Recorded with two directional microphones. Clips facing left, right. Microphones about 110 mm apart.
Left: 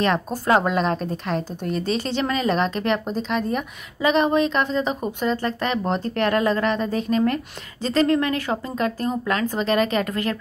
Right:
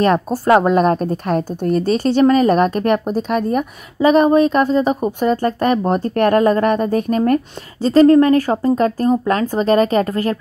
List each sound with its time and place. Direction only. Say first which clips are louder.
0.5 s a woman's voice: right 7 dB; 45° right (ahead or behind)